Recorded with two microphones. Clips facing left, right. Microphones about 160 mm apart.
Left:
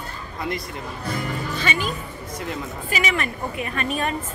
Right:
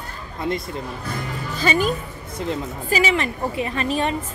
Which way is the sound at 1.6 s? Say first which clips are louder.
Right 9 dB; 35° right (ahead or behind).